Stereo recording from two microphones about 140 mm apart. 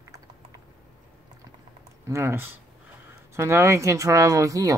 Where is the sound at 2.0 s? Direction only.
20° right (ahead or behind).